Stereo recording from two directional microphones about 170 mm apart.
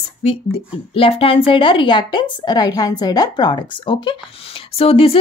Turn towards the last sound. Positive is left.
turn(degrees=35)  # may be behind; listen again after turning